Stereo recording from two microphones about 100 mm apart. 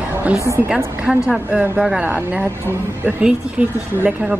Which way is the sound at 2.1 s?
15° right (ahead or behind).